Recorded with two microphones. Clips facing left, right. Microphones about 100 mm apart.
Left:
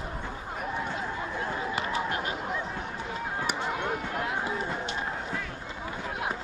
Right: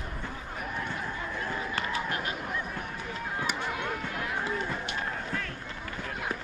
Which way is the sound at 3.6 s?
20° left (ahead or behind).